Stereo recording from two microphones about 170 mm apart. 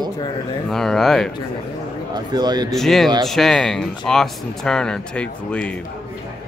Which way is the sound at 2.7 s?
Centre (ahead or behind).